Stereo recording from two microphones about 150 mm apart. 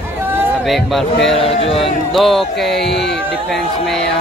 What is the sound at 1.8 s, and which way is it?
A man's voice, centre (ahead or behind).